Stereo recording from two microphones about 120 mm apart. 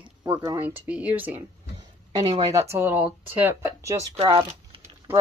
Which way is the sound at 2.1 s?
25° right (ahead or behind).